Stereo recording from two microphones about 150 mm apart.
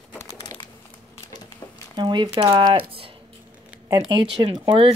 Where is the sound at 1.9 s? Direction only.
30° right (ahead or behind).